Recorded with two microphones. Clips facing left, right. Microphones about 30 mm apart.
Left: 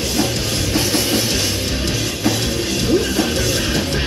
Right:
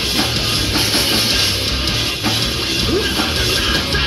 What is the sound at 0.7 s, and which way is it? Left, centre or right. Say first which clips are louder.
Music: even; right.